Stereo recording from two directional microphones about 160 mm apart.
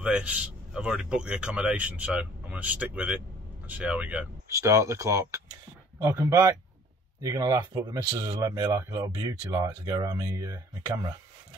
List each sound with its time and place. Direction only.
0.0 s a man's voice: 10° right (ahead or behind)
4.5 s a man's voice: 20° right (ahead or behind)